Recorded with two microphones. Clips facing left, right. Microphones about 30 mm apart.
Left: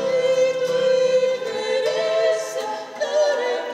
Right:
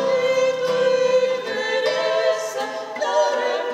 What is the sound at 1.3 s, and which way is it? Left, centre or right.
Choir, centre.